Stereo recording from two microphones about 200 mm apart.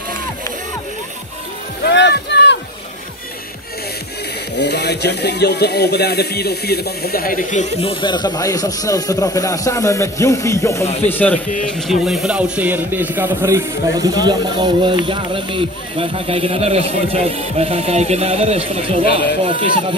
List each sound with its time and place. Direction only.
1.8 s music: 60° left (ahead or behind)
4.6 s speech: 55° left (ahead or behind); by 20.0 s 25° right (ahead or behind)